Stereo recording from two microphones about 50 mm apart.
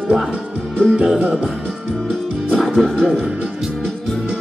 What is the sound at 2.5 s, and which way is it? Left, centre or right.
Music, centre.